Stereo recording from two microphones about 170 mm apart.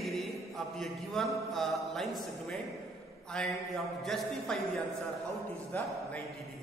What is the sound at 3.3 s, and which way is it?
A man's voice, 5° left (ahead or behind).